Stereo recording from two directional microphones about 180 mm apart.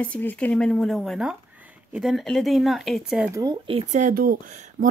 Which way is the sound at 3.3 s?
25° right (ahead or behind).